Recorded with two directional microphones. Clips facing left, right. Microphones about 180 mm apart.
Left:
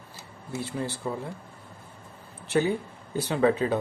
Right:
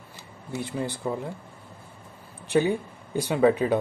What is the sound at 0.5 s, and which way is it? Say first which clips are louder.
Speech: right 2 dB; 15° right (ahead or behind).